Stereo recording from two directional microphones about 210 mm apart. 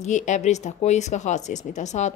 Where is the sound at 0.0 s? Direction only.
35° left (ahead or behind).